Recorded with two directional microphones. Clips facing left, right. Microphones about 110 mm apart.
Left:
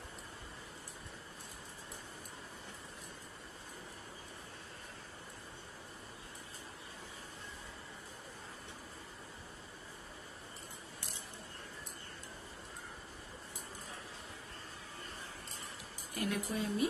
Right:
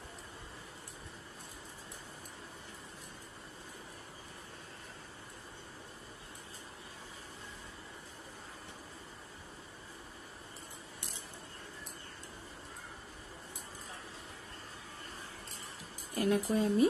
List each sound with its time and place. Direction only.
16.2 s speech: 35° right (ahead or behind)